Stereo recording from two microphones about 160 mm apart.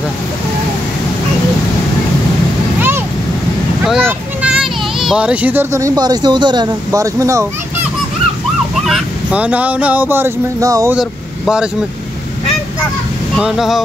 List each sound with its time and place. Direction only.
3.8 s a child's voice: 5° right (ahead or behind); by 7.4 s 20° right (ahead or behind)
8.8 s speech: 5° right (ahead or behind); by 11.0 s 20° right (ahead or behind)
11.0 s speech: 5° right (ahead or behind)
13.4 s speech: 5° right (ahead or behind)